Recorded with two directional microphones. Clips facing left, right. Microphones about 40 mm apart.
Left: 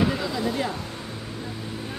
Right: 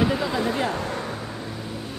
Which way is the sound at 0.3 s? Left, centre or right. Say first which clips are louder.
Right 2 dB; right.